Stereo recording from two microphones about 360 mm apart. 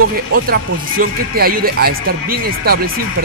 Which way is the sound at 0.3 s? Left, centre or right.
Right.